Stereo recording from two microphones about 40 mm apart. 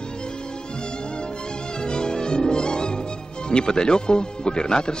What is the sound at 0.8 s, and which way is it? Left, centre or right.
Music, left.